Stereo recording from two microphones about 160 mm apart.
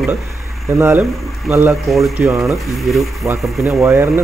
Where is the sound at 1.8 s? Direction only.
Centre (ahead or behind).